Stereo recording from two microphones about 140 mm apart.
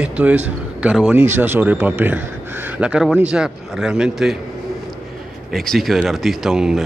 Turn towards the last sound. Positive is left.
turn(degrees=-5)  # may be behind; listen again after turning